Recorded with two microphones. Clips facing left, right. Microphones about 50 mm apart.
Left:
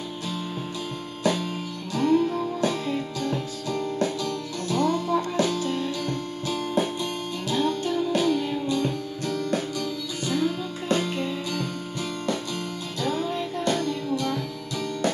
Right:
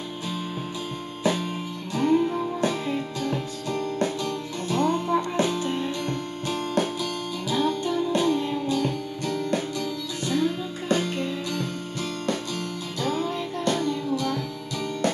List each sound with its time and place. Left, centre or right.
1.2 s music: centre
3.2 s music: right
5.1 s music: right
7.4 s music: centre
13.0 s music: centre
14.1 s music: centre